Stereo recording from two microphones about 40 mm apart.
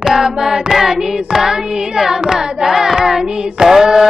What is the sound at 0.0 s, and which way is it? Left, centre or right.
Child singing, centre.